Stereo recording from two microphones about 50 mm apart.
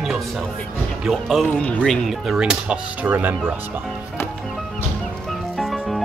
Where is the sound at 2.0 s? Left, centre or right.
Centre.